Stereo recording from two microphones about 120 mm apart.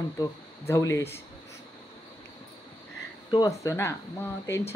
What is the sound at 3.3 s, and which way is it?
Speech, 30° left (ahead or behind).